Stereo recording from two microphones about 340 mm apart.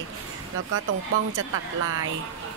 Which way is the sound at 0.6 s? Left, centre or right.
Right.